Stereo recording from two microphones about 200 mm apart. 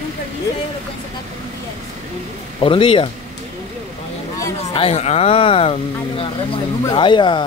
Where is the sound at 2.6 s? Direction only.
25° left (ahead or behind).